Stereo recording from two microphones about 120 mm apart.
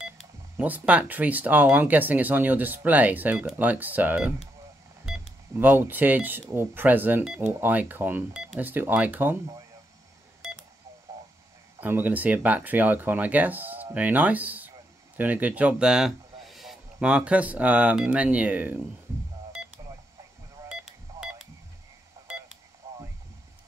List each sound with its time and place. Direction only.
0.6 s speech: 15° right (ahead or behind)
5.6 s speech: 15° right (ahead or behind)
8.3 s speech: 5° right (ahead or behind)
8.5 s speech: 15° right (ahead or behind)
11.8 s speech: 15° right (ahead or behind)